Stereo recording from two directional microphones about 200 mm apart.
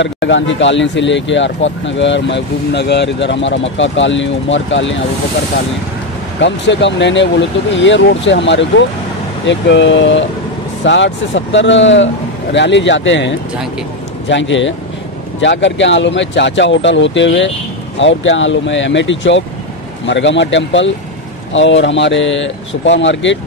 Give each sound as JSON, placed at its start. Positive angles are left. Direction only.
{"t": 0.0, "sound": "speech", "side_deg": 65}
{"t": 6.4, "sound": "speech", "side_deg": 65}